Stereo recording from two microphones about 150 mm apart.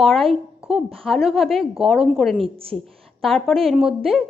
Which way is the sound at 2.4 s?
40° right (ahead or behind).